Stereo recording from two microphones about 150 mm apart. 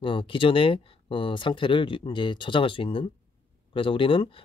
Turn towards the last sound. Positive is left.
turn(degrees=35)  # may be behind; listen again after turning